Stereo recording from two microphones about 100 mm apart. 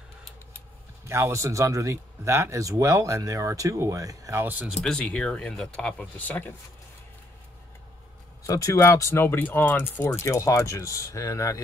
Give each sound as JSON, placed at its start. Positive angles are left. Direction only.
{"t": 1.0, "sound": "a man's voice", "side_deg": -30}
{"t": 4.8, "sound": "speech", "side_deg": 10}
{"t": 8.5, "sound": "speech", "side_deg": 30}
{"t": 10.0, "sound": "speech", "side_deg": 30}